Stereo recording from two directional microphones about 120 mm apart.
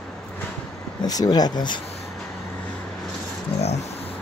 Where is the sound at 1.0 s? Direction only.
35° left (ahead or behind).